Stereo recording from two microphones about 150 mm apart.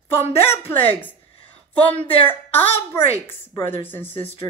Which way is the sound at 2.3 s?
15° left (ahead or behind).